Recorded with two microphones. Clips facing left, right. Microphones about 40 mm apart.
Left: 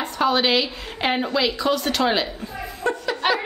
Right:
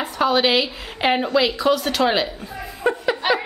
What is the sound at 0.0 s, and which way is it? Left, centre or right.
A woman's voice, centre.